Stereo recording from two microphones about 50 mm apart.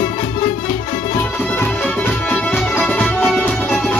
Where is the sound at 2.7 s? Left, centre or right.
Left.